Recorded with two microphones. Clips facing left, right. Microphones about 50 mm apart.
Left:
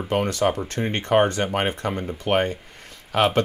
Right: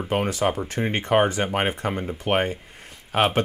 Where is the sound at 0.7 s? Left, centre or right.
Centre.